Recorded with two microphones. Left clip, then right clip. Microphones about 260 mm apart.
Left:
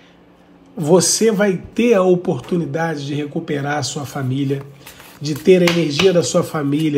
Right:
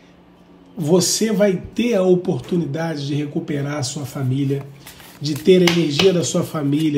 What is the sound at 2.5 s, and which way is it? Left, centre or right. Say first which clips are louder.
Speech: left 3 dB; centre.